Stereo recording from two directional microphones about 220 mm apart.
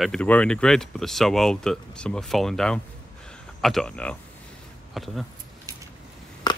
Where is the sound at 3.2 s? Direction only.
5° left (ahead or behind).